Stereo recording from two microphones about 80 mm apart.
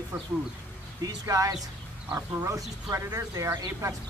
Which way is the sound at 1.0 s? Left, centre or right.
Right.